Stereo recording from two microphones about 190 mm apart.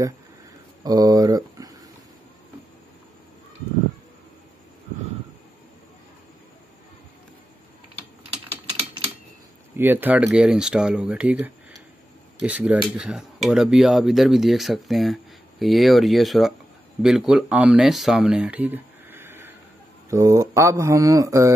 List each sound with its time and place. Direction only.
0.8 s speech: 20° right (ahead or behind)
9.8 s speech: 10° right (ahead or behind)